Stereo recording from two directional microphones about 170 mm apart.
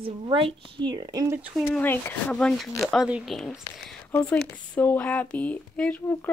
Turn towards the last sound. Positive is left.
turn(degrees=5)  # may be behind; listen again after turning